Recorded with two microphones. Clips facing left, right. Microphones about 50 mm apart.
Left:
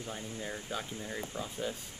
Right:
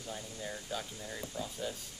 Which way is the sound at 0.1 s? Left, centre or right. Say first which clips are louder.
Even; left.